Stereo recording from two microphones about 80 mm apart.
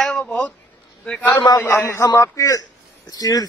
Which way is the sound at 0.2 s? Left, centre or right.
Centre.